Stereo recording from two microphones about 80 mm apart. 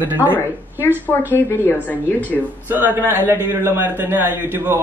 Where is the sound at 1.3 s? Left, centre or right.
Left.